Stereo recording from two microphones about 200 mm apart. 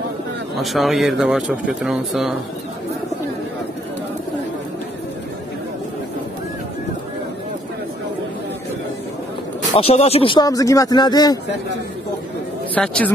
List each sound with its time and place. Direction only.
0.6 s speech: centre (ahead or behind)
9.8 s speech: 30° left (ahead or behind)
12.7 s speech: 5° left (ahead or behind)